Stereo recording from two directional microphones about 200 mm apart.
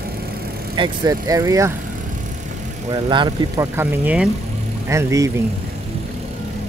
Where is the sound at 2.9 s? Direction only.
20° right (ahead or behind).